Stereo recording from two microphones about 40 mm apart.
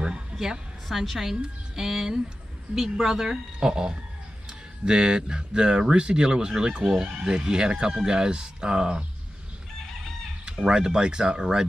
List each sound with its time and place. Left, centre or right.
0.0 s a sound: centre
0.8 s a woman's voice: centre; by 9.0 s right
10.7 s speech: right